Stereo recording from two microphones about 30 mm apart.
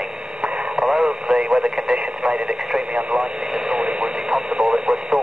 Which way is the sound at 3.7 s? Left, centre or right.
Right.